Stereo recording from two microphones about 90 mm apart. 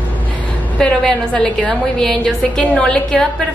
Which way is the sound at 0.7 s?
10° left (ahead or behind).